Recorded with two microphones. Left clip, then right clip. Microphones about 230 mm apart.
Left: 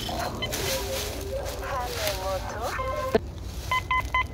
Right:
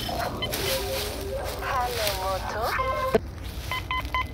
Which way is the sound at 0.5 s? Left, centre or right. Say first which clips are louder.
Right 2 dB; centre.